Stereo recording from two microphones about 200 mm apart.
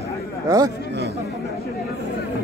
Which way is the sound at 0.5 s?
15° right (ahead or behind).